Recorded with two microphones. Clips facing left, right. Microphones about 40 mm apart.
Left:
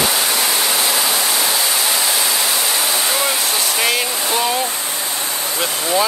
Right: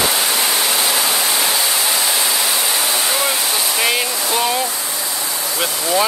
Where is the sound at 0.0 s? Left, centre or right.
Centre.